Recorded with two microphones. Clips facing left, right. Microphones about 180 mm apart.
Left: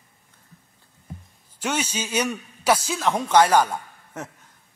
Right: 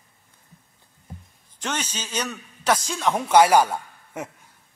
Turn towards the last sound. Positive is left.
turn(degrees=-10)  # may be behind; listen again after turning